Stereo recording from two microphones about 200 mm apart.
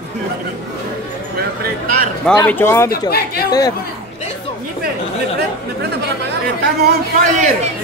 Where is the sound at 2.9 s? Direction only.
50° left (ahead or behind).